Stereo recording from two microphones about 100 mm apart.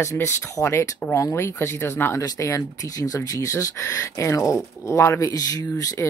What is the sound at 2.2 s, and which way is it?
Speech, 40° left (ahead or behind).